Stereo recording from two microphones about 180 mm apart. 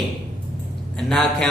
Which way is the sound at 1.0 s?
Centre (ahead or behind).